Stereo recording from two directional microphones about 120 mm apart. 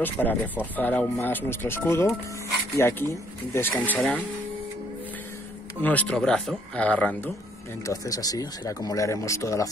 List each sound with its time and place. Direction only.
0.0 s speech: 15° left (ahead or behind)
5.8 s speech: 15° left (ahead or behind)
7.8 s speech: 30° left (ahead or behind)